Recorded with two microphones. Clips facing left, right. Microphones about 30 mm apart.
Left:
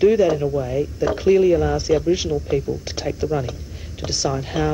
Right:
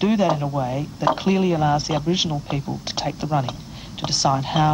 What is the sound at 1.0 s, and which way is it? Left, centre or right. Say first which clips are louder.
A woman's voice: left 4 dB; right.